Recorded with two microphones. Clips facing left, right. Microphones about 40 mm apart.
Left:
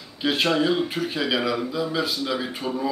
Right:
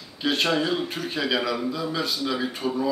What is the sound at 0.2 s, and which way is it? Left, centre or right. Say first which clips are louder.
Speech: left 2 dB; centre.